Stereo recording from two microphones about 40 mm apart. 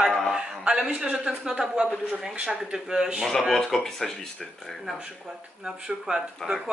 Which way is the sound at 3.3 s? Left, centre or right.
Centre.